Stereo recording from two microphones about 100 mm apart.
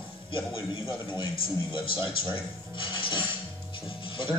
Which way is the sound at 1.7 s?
55° left (ahead or behind).